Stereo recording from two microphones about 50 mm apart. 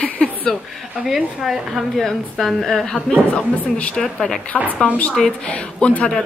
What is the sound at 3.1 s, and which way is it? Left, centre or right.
Speech, left.